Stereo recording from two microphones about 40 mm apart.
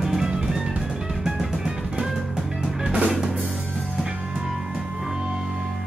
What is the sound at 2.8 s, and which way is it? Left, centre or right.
Music, right.